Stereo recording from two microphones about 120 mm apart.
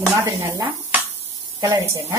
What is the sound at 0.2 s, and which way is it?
A woman's voice, 25° right (ahead or behind).